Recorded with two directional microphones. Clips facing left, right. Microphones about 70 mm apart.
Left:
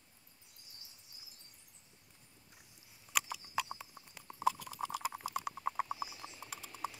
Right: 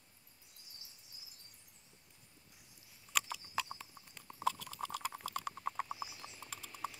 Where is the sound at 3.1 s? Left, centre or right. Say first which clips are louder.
Left 1 dB; centre.